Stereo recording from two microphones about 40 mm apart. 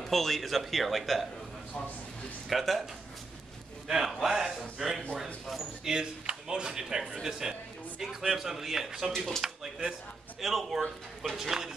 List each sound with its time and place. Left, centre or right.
0.0 s speech: centre
2.5 s speech: centre
3.8 s a man's voice: centre
5.9 s a man's voice: centre